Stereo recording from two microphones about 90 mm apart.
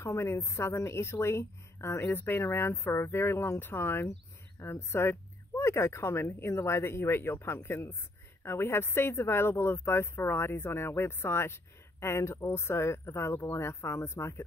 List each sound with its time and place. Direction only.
0.0 s speech: 30° left (ahead or behind)